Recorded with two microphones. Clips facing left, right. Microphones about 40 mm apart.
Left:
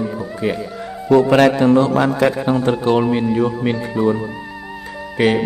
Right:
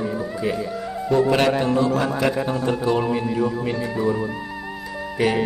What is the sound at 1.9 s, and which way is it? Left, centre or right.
Speech, left.